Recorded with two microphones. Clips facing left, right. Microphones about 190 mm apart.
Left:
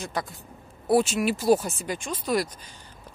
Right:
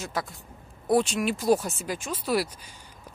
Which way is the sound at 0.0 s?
Centre (ahead or behind).